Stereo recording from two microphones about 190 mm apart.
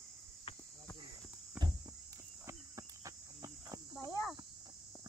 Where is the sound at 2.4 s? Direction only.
15° right (ahead or behind).